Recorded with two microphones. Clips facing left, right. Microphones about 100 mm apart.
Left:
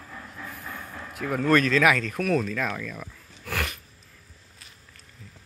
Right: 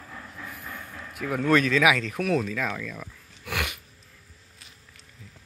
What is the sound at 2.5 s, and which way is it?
Speech, centre (ahead or behind).